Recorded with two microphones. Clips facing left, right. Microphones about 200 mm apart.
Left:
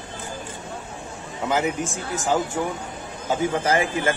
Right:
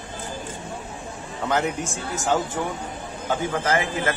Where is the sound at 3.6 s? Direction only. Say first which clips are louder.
Even; 30° left (ahead or behind).